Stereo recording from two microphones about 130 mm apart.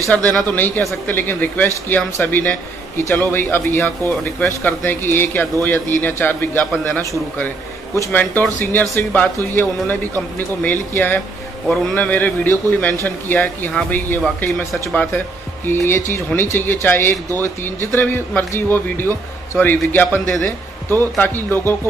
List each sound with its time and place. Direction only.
0.1 s speech: 10° left (ahead or behind)
14.7 s speech: centre (ahead or behind)
15.9 s speech: 15° left (ahead or behind)